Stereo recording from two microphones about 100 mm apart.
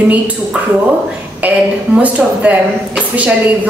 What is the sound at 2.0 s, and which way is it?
Speech, 15° right (ahead or behind).